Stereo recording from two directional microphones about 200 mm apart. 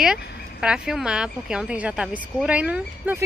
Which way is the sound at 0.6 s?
5° right (ahead or behind).